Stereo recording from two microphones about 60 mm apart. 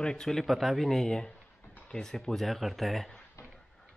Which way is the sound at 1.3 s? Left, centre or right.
Left.